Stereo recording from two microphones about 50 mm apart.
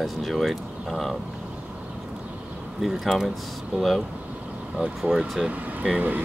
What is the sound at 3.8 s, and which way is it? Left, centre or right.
Speech, centre.